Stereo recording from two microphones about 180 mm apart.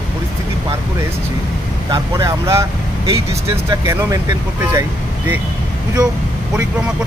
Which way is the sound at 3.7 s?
15° right (ahead or behind).